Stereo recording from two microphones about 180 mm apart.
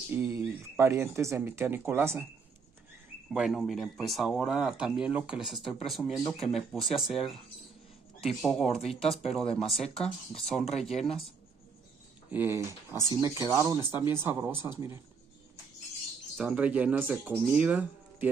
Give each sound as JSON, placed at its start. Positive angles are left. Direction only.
{"t": 0.1, "sound": "speech", "side_deg": -15}
{"t": 3.3, "sound": "speech", "side_deg": -5}
{"t": 12.3, "sound": "speech", "side_deg": -10}
{"t": 16.3, "sound": "speech", "side_deg": -5}